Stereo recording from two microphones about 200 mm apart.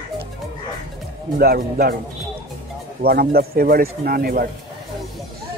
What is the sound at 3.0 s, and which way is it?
Speech, 50° right (ahead or behind).